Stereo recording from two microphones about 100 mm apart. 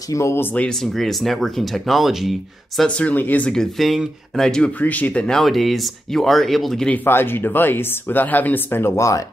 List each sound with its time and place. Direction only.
0.1 s speech: 30° left (ahead or behind)
0.7 s speech: 5° left (ahead or behind)
2.9 s speech: 15° left (ahead or behind)
3.7 s speech: centre (ahead or behind)
6.9 s speech: 20° left (ahead or behind)